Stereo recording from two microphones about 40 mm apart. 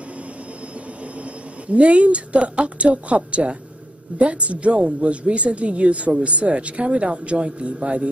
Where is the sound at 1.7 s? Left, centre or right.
Right.